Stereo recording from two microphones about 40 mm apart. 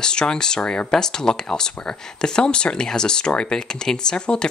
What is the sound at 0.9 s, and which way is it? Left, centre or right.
Speech, centre.